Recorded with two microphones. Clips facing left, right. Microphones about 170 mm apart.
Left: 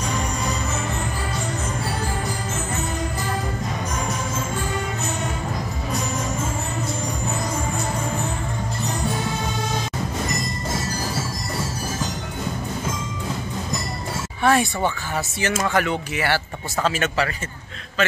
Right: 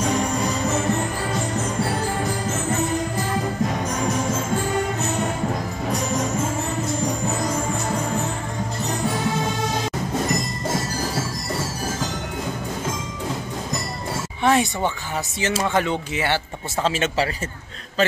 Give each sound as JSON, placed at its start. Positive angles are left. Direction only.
{"t": 14.4, "sound": "speech", "side_deg": -20}